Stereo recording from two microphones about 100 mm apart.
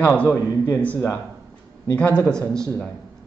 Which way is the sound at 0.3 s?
20° left (ahead or behind).